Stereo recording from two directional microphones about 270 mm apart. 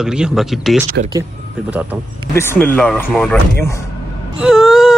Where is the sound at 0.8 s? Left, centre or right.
Right.